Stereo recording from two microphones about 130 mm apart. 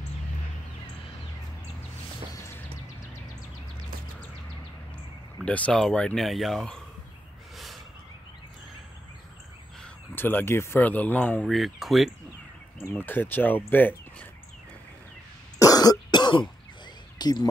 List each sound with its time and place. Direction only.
5.4 s speech: 10° left (ahead or behind)
7.5 s a sound: centre (ahead or behind)
10.1 s speech: 15° left (ahead or behind)
11.4 s speech: centre (ahead or behind)
12.8 s speech: 15° left (ahead or behind)
15.6 s cough: 30° left (ahead or behind)
17.2 s speech: 30° left (ahead or behind)